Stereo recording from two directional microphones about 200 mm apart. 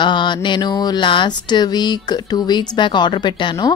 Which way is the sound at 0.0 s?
25° left (ahead or behind).